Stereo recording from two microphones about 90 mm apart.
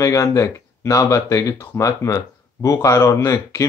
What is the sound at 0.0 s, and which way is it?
Speech, 35° left (ahead or behind).